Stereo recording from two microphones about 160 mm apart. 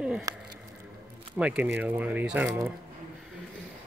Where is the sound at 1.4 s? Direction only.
10° right (ahead or behind).